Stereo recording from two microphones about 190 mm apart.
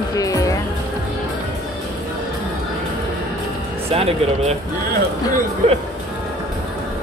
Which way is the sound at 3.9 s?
30° right (ahead or behind).